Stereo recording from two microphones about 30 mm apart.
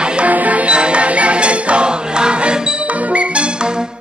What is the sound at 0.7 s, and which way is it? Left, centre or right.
Music, right.